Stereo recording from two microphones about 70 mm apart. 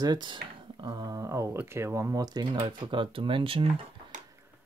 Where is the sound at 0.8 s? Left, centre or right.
Right.